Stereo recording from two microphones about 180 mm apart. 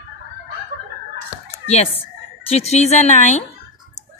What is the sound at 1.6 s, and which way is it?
A woman's voice, 35° left (ahead or behind).